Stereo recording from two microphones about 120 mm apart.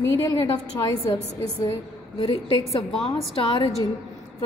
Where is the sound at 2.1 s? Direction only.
45° left (ahead or behind).